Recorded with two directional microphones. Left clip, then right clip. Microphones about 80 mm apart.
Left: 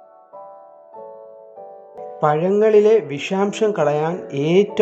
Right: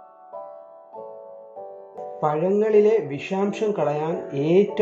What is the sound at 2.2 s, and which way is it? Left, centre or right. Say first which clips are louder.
Speech: left 5 dB; centre.